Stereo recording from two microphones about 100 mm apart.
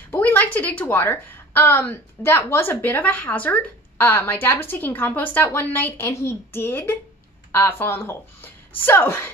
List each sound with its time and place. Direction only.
0.1 s a woman's voice: 20° left (ahead or behind)